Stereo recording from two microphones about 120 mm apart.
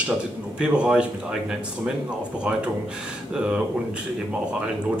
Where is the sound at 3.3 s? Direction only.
5° right (ahead or behind).